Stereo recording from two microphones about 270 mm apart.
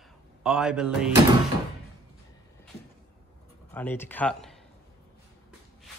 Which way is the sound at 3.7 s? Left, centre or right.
Centre.